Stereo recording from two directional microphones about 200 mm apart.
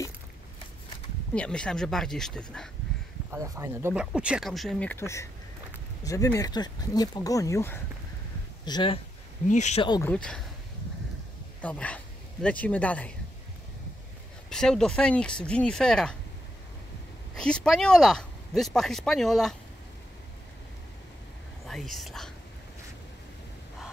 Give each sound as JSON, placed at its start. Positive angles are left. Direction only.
{"t": 1.3, "sound": "speech", "side_deg": 5}
{"t": 3.3, "sound": "speech", "side_deg": -15}
{"t": 8.6, "sound": "speech", "side_deg": 25}
{"t": 9.5, "sound": "speech", "side_deg": 35}
{"t": 10.0, "sound": "speech", "side_deg": 5}
{"t": 11.6, "sound": "speech", "side_deg": 5}
{"t": 14.5, "sound": "speech", "side_deg": 5}
{"t": 17.4, "sound": "speech", "side_deg": 5}
{"t": 21.6, "sound": "speech", "side_deg": 0}